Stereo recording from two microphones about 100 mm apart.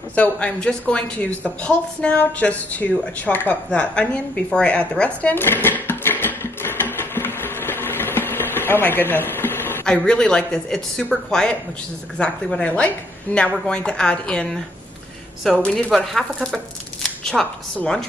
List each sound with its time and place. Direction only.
0.1 s a woman's voice: 15° left (ahead or behind)
9.8 s a woman's voice: 10° left (ahead or behind)